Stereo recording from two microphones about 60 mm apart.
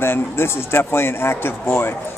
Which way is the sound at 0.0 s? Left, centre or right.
Left.